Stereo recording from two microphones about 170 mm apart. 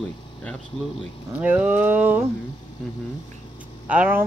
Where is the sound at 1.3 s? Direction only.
10° right (ahead or behind).